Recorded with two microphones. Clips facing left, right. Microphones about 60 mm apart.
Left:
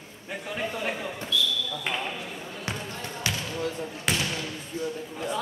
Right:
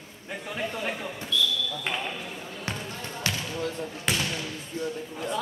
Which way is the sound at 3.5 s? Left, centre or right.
Centre.